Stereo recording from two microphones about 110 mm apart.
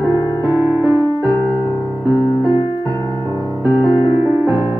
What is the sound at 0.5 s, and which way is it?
Music, 20° right (ahead or behind).